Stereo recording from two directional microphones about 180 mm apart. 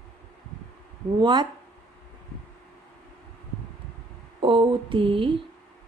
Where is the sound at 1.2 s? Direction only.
25° right (ahead or behind).